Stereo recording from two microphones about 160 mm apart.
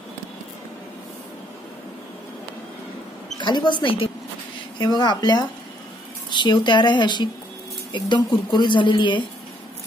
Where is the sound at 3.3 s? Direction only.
30° left (ahead or behind).